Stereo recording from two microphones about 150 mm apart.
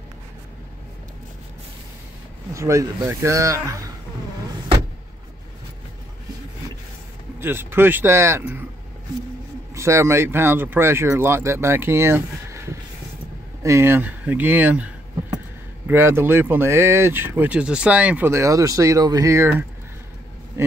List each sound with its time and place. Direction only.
2.5 s speech: 20° right (ahead or behind)
7.3 s speech: 15° right (ahead or behind)
9.8 s speech: 20° right (ahead or behind)
20.6 s vehicle: 15° right (ahead or behind)